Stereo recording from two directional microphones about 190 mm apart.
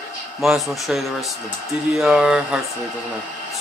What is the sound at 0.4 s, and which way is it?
A man's voice, centre (ahead or behind).